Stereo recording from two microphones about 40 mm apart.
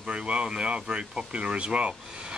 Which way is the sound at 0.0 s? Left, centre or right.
Right.